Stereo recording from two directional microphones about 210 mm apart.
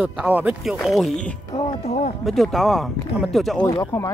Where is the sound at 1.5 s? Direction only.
20° left (ahead or behind).